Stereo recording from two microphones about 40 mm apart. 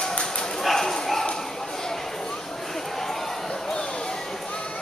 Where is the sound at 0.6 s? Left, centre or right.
Centre.